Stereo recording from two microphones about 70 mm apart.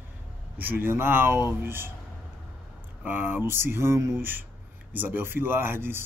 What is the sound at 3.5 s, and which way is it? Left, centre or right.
Speech, right.